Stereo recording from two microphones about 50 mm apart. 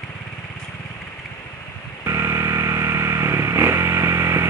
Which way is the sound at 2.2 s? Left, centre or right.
Right.